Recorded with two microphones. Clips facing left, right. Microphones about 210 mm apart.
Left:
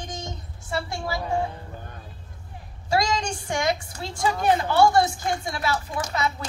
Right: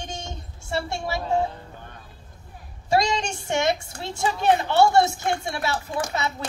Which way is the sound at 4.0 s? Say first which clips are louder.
Left 1 dB; 25° right (ahead or behind).